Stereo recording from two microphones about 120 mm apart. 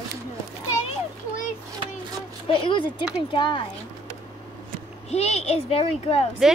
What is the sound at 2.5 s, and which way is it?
Speech, 45° left (ahead or behind).